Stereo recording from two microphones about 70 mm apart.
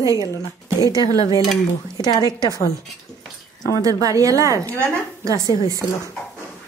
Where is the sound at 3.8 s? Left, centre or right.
Right.